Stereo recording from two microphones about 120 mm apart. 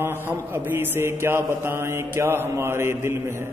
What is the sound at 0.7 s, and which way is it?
A man's voice, 20° right (ahead or behind).